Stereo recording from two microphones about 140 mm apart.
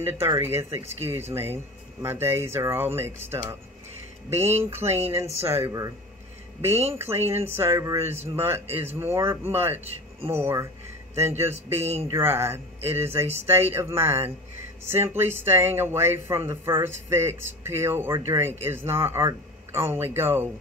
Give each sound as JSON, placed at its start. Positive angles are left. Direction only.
{"t": 0.0, "sound": "speech", "side_deg": -20}
{"t": 4.7, "sound": "speech", "side_deg": -20}
{"t": 7.0, "sound": "speech", "side_deg": -15}